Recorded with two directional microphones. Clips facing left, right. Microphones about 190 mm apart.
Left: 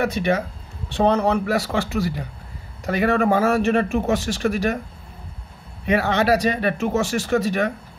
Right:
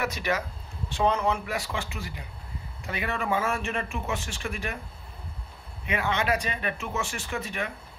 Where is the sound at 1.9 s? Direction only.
60° left (ahead or behind).